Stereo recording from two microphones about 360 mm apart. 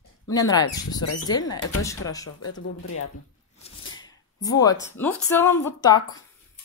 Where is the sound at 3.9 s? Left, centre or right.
Centre.